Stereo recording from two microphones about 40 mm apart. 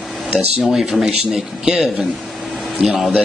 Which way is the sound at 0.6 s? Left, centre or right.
Centre.